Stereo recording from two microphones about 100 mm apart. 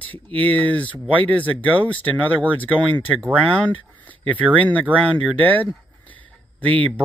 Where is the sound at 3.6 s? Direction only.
15° left (ahead or behind).